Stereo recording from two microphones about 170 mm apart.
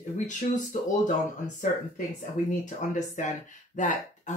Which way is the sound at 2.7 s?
45° left (ahead or behind).